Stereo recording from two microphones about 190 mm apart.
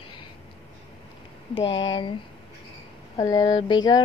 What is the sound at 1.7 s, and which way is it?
Speech, 80° left.